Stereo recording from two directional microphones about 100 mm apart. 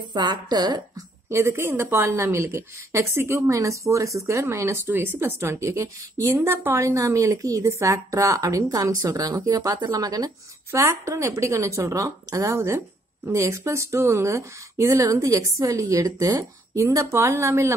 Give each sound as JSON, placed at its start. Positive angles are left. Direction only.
{"t": 0.1, "sound": "a woman's voice", "side_deg": -45}
{"t": 1.3, "sound": "a woman's voice", "side_deg": -25}